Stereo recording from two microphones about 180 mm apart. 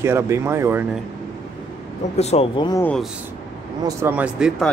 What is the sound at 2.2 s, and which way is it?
Speech, 35° left (ahead or behind).